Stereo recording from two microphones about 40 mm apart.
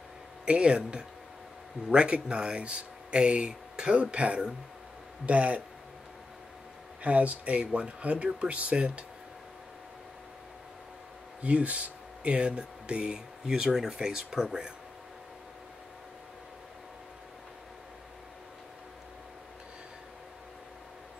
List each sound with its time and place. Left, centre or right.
0.5 s speech: right
7.0 s speech: right
11.4 s speech: right
12.2 s speech: right